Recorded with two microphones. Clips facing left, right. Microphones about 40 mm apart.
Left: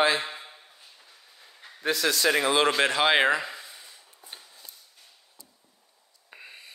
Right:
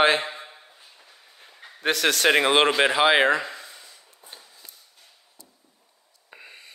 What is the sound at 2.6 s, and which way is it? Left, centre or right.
Speech, centre.